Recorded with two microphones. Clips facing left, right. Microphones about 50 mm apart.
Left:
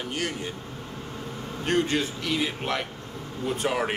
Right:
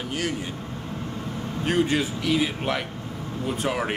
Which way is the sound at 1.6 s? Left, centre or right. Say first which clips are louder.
Right 2 dB; centre.